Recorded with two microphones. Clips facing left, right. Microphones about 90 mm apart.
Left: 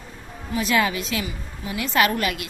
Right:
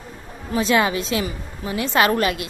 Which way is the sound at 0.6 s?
30° right (ahead or behind).